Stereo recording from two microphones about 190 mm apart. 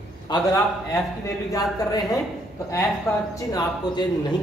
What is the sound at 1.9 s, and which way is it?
Speech, 20° left (ahead or behind).